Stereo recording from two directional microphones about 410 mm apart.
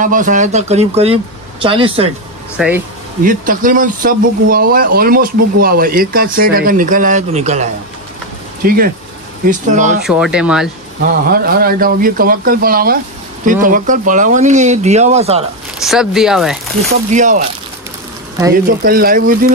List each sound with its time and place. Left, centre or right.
0.0 s speech: centre
2.5 s speech: centre
3.3 s speech: centre
10.0 s speech: centre
11.3 s speech: right
15.8 s speech: centre
17.1 s speech: centre
18.5 s speech: right